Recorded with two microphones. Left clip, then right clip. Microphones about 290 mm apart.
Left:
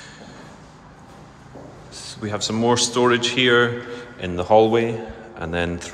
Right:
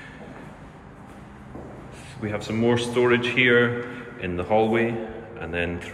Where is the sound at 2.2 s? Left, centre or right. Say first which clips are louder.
Left 3 dB; centre.